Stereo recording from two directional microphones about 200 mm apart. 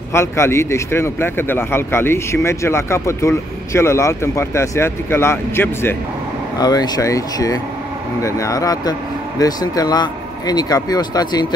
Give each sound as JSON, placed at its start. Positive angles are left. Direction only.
{"t": 0.1, "sound": "speech", "side_deg": 15}